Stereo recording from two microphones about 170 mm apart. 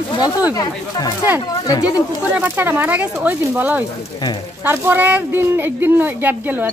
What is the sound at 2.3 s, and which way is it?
Speech, 10° right (ahead or behind).